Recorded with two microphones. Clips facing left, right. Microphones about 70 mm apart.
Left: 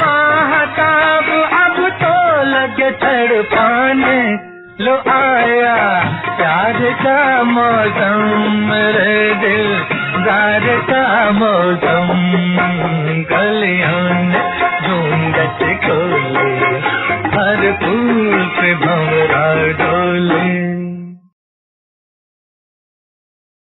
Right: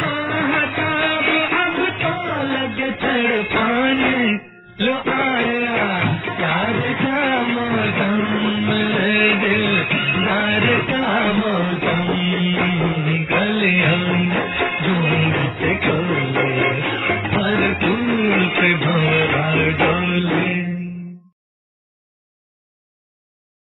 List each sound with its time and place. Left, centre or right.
0.0 s music: left
15.3 s music: left
20.7 s music: centre